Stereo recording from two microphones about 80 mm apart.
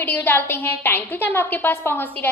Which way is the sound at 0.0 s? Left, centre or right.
Left.